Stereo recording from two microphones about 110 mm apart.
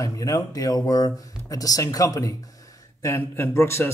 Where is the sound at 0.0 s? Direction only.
30° left (ahead or behind).